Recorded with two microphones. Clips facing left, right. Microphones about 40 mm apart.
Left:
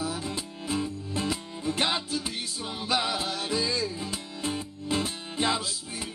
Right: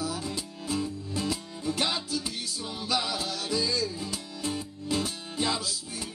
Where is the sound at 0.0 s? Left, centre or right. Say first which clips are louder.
Left 1 dB; left.